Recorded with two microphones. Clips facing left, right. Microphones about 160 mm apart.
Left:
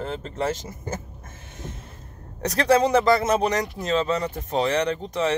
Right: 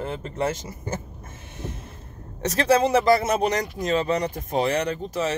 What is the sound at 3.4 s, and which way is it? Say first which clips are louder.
Speech: even; 15° right (ahead or behind).